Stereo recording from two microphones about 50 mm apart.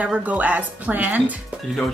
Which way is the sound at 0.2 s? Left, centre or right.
Right.